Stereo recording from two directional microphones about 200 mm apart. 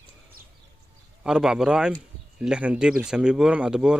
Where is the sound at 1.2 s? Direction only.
5° right (ahead or behind).